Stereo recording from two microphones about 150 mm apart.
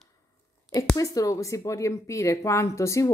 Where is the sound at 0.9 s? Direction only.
20° left (ahead or behind).